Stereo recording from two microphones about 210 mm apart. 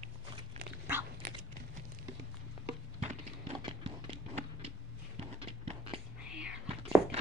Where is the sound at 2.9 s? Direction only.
30° right (ahead or behind).